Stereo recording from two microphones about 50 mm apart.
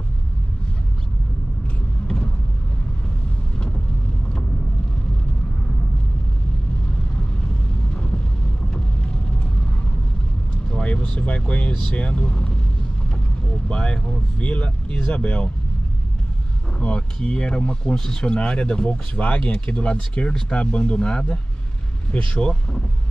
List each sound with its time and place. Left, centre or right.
10.7 s speech: centre
13.7 s speech: centre
16.7 s speech: left